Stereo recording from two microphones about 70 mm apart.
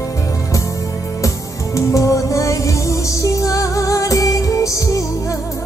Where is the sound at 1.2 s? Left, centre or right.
Left.